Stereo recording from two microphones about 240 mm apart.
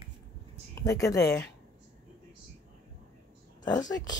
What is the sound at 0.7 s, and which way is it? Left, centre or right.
Speech, centre.